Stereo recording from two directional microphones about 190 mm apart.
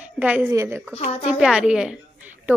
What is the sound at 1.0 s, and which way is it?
Speech, 35° left (ahead or behind).